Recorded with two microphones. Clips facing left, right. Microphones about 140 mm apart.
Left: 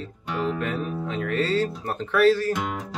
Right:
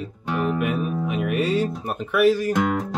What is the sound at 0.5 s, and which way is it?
Speech, 10° right (ahead or behind).